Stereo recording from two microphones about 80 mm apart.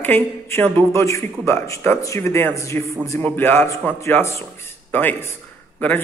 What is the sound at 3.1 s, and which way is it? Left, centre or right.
A man's voice, left.